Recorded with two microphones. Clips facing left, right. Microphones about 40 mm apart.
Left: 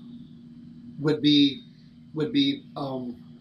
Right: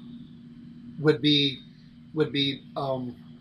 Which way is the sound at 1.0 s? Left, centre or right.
Centre.